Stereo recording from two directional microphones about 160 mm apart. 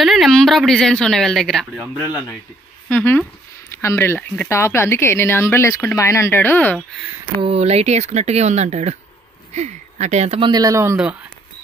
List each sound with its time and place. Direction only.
0.0 s a woman's voice: centre (ahead or behind)
1.8 s speech: 20° left (ahead or behind)
2.9 s speech: 10° left (ahead or behind)
7.4 s speech: 40° right (ahead or behind)
10.5 s a man's voice: 20° right (ahead or behind)